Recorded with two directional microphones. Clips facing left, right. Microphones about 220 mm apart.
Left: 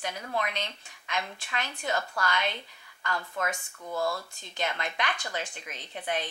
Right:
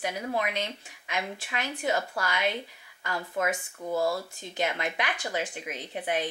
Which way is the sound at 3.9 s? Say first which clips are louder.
Right 3 dB; 35° right (ahead or behind).